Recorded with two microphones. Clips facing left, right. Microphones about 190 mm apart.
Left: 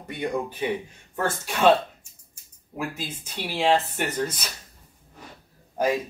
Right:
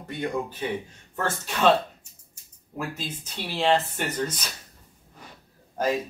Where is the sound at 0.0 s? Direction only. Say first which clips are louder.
Left 1 dB; 15° left (ahead or behind).